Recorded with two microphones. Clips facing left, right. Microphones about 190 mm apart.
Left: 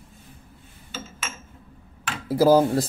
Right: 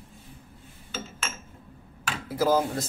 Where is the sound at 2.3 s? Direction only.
35° left (ahead or behind).